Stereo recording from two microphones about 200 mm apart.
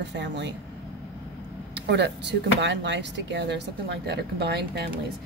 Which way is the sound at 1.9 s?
60° right (ahead or behind).